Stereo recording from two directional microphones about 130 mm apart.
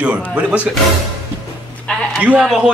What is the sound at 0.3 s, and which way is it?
Speech, 10° right (ahead or behind).